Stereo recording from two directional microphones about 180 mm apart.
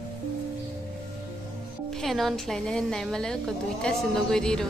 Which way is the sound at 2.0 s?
Centre (ahead or behind).